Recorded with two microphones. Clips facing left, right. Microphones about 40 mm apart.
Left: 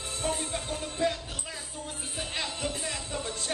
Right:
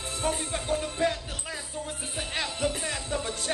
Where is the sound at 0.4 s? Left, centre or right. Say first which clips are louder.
Right 4 dB; centre.